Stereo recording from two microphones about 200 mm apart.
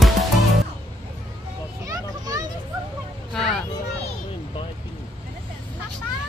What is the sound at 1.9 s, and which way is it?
Children playing, 20° right (ahead or behind).